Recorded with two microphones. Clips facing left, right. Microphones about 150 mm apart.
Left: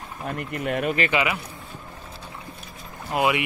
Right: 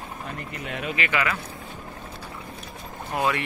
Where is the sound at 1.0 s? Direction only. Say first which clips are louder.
Left 2 dB; 20° left (ahead or behind).